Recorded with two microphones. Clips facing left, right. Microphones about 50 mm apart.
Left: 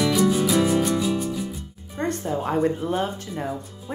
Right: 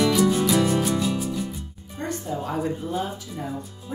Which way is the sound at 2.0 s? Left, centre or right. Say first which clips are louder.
Left 4 dB; left.